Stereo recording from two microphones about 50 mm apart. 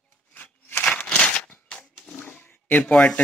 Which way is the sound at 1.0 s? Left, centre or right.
Left.